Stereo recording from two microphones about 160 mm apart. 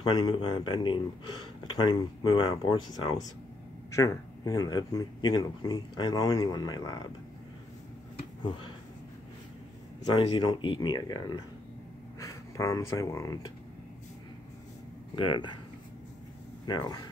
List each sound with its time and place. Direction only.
0.1 s speech: 25° left (ahead or behind)
8.5 s speech: 30° left (ahead or behind)
10.1 s speech: 30° left (ahead or behind)
15.1 s speech: 30° left (ahead or behind)
16.6 s speech: 25° left (ahead or behind)